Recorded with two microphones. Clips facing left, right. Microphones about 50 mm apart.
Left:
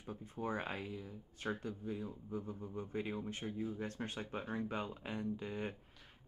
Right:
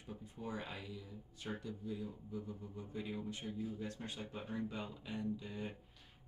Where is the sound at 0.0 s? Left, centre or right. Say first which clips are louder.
Left 5 dB; left.